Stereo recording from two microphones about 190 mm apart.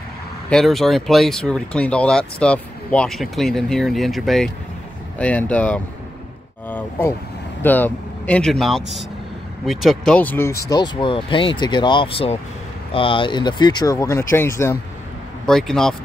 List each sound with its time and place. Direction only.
0.5 s speech: centre (ahead or behind)
6.7 s vehicle: 10° left (ahead or behind)
7.6 s speech: 10° left (ahead or behind)
15.4 s speech: centre (ahead or behind)